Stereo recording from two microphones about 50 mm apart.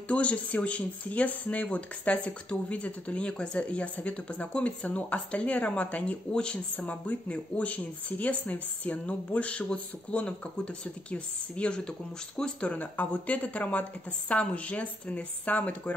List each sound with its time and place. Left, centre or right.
0.1 s speech: left
6.3 s speech: centre
6.9 s speech: left
12.7 s speech: left